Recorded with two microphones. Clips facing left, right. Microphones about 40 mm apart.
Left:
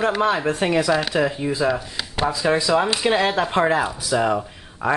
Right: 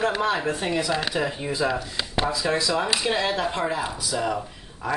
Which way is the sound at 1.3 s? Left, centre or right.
Centre.